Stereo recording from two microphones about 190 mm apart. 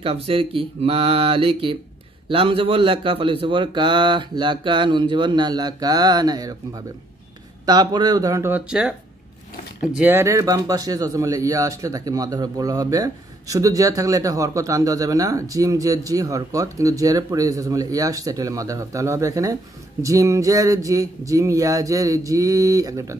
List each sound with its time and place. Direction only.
0.0 s a man's voice: 30° right (ahead or behind)